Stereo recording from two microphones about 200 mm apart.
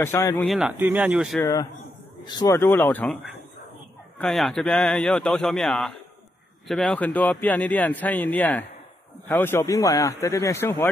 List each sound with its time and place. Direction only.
0.0 s a man's voice: 15° left (ahead or behind)
0.5 s a man's voice: 5° right (ahead or behind)
1.4 s a man's voice: 15° left (ahead or behind)
4.2 s a man's voice: centre (ahead or behind)